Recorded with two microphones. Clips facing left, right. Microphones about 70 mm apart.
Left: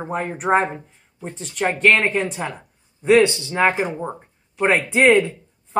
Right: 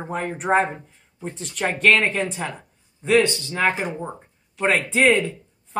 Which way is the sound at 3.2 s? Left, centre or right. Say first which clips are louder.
Left 4 dB; left.